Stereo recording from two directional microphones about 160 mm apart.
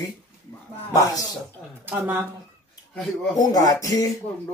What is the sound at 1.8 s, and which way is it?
Cough, 15° right (ahead or behind).